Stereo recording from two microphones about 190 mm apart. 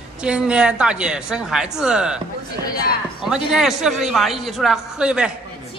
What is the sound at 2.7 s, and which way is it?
Speech, 50° left (ahead or behind).